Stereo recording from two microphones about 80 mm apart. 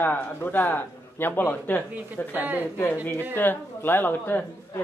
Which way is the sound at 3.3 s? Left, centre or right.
Left.